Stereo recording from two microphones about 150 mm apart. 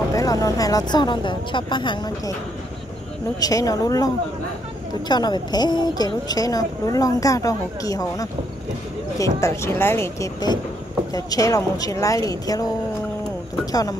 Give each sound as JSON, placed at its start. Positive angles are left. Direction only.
{"t": 0.1, "sound": "a woman's voice", "side_deg": 25}
{"t": 3.3, "sound": "a woman's voice", "side_deg": 25}
{"t": 13.7, "sound": "a woman's voice", "side_deg": 25}